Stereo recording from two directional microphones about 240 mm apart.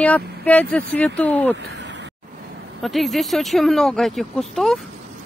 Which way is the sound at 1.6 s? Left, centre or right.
Right.